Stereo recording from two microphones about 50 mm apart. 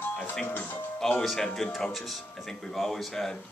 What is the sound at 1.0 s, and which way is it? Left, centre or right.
Speech, centre.